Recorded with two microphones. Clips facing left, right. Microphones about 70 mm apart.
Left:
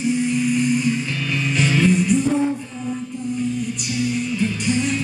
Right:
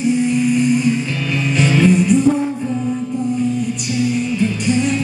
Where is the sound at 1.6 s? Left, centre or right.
Right.